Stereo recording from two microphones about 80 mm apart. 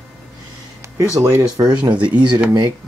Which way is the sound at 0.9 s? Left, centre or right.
Right.